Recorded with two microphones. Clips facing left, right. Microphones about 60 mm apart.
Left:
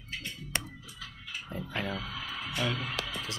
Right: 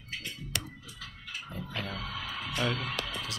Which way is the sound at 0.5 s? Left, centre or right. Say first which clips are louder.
Left 5 dB; left.